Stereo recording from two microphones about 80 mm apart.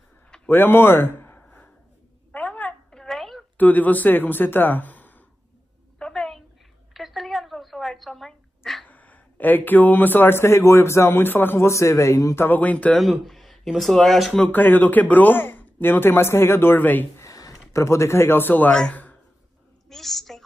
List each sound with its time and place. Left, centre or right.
0.5 s a sound: left
3.0 s a sound: centre
3.5 s speech: left
5.9 s a sound: centre
6.9 s dog: centre
8.8 s a man's voice: centre; by 12.4 s left
12.4 s a man's voice: centre
12.9 s speech: centre
14.5 s a man's voice: left
17.2 s speech: left
18.7 s speech: centre
19.9 s a woman's voice: centre